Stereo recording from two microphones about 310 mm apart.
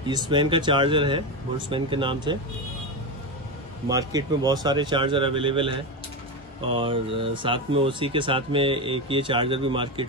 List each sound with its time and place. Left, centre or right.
0.0 s speech: centre
3.9 s speech: centre